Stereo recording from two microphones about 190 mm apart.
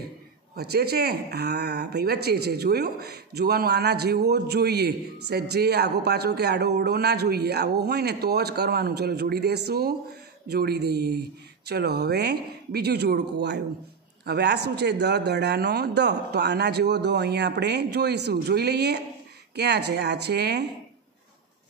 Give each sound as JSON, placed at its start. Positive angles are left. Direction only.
{"t": 0.6, "sound": "speech", "side_deg": -55}